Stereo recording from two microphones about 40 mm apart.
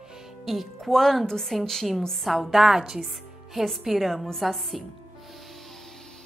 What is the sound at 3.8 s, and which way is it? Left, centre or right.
Speech, centre.